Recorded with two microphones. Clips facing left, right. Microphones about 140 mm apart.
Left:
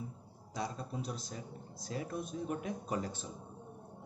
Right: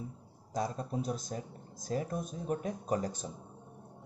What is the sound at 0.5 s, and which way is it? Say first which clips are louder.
Speech: right 5 dB; 45° right (ahead or behind).